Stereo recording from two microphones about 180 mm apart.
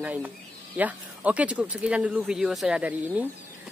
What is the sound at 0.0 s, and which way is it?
Speech, 10° right (ahead or behind).